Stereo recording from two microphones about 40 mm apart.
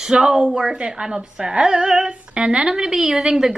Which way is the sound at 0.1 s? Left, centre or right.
Right.